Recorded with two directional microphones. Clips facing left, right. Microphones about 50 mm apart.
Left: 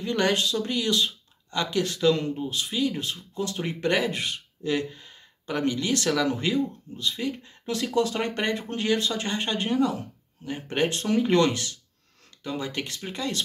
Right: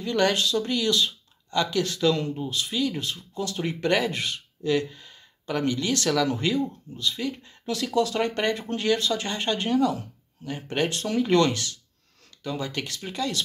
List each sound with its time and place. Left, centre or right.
0.0 s a man's voice: centre